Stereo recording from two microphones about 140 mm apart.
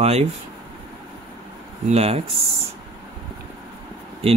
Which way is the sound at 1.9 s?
50° right (ahead or behind).